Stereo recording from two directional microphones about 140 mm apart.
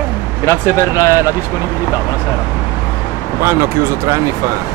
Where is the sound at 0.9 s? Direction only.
25° left (ahead or behind).